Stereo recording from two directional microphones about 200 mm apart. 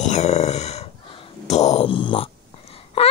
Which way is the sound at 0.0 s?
35° left (ahead or behind).